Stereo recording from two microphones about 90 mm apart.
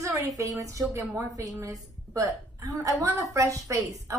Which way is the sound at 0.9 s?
25° right (ahead or behind).